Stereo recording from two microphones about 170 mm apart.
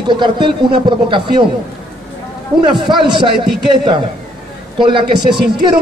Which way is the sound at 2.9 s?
30° right (ahead or behind).